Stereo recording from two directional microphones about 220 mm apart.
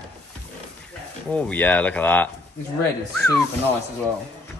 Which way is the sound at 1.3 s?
5° left (ahead or behind).